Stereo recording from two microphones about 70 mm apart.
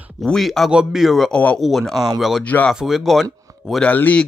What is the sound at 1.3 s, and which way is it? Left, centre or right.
Speech, left.